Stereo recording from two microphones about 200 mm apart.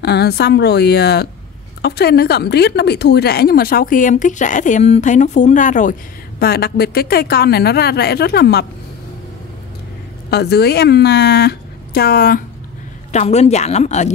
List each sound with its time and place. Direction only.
0.0 s a woman's voice: 55° left (ahead or behind)
6.4 s a woman's voice: 50° left (ahead or behind)
10.3 s a woman's voice: 55° left (ahead or behind)
13.1 s a woman's voice: 35° left (ahead or behind)